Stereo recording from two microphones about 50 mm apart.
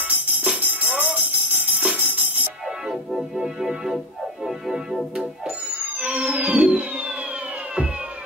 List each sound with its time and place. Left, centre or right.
0.0 s music: right
2.9 s organ: centre
5.7 s music: right